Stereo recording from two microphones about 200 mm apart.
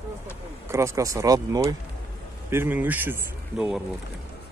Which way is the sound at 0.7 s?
15° right (ahead or behind).